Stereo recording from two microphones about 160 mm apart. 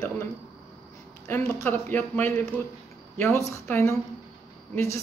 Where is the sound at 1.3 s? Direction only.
10° left (ahead or behind).